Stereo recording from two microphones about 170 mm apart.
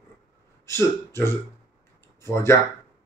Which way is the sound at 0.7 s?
15° left (ahead or behind).